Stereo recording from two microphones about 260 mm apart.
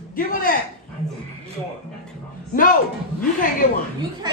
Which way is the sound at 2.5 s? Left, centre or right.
Left.